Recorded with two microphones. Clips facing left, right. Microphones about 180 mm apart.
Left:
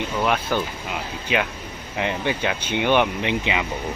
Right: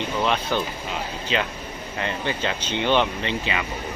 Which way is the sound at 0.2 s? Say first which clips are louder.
Left 1 dB; 10° left (ahead or behind).